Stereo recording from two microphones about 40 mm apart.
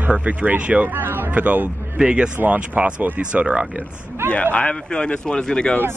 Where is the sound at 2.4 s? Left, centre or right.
Right.